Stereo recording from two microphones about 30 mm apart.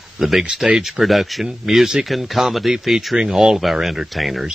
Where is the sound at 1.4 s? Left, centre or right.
Centre.